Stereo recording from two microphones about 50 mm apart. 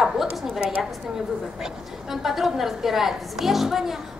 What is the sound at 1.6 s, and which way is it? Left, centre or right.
A woman's voice, centre.